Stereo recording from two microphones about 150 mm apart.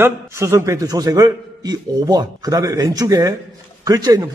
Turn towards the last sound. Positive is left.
turn(degrees=-25)  # may be behind; listen again after turning